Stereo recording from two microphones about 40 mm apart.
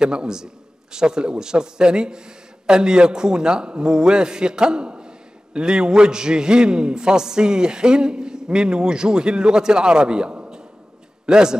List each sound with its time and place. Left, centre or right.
0.0 s speech: right
11.2 s a man's voice: centre